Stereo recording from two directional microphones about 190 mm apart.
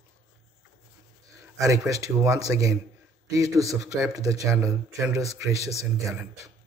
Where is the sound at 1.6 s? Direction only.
15° right (ahead or behind).